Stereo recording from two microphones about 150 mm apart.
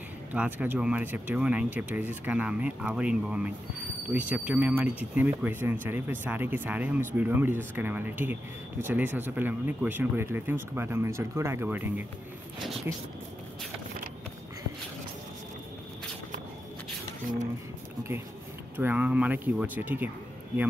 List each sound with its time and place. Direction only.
0.3 s speech: 10° right (ahead or behind)
18.8 s speech: 10° right (ahead or behind)